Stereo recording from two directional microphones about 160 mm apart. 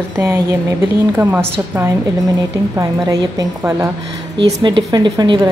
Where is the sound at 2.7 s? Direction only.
20° right (ahead or behind).